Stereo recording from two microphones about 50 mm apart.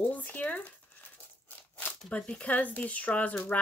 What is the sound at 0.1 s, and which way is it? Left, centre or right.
Speech, left.